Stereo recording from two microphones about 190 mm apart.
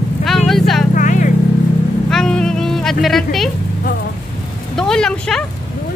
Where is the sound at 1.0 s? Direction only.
40° left (ahead or behind).